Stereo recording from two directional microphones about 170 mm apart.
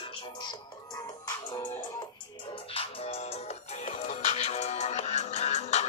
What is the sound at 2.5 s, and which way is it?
Music, 35° left (ahead or behind).